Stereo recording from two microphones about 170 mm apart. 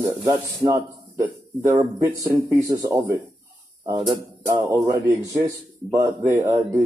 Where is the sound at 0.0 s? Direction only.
20° right (ahead or behind).